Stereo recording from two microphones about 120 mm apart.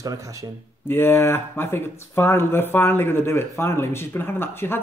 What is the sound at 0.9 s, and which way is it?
Speech, 20° left (ahead or behind).